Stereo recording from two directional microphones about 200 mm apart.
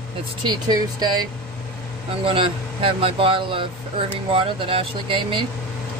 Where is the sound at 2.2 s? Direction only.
25° right (ahead or behind).